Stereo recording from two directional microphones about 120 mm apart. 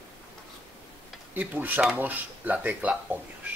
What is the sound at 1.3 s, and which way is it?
Speech, 15° right (ahead or behind).